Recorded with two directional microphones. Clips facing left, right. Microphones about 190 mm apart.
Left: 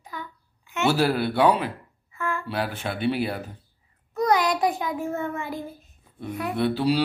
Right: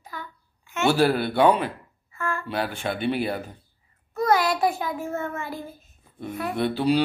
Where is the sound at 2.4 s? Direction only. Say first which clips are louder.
Right 1 dB; 5° left (ahead or behind).